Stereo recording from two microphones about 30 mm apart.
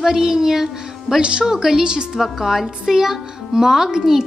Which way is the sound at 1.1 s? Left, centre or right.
Right.